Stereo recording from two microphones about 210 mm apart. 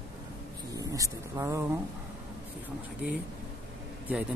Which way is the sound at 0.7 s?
15° right (ahead or behind).